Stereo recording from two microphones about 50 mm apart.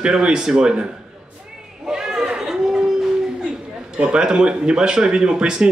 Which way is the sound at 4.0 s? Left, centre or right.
Centre.